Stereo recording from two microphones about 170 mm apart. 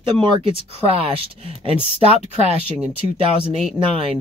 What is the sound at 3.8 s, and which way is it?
Speech, 25° right (ahead or behind).